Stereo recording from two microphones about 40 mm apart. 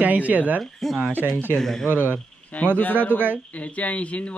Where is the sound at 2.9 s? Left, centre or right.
Right.